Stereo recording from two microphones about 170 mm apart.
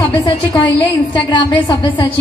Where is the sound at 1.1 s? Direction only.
30° left (ahead or behind).